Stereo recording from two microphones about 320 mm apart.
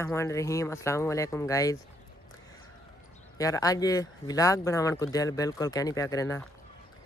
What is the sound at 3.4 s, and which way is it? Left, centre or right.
Speech, centre.